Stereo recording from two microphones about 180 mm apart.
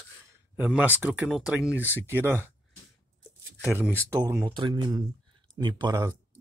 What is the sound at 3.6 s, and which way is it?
Speech, 5° right (ahead or behind).